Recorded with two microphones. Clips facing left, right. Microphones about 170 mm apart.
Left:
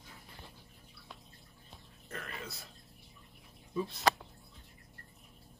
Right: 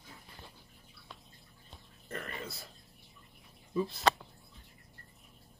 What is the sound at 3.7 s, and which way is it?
Speech, centre (ahead or behind).